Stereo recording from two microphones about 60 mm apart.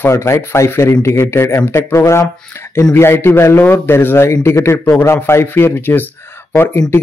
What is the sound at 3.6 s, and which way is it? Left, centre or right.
Speech, left.